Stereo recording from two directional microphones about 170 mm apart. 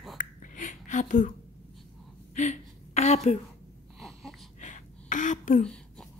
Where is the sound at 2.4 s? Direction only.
40° left (ahead or behind).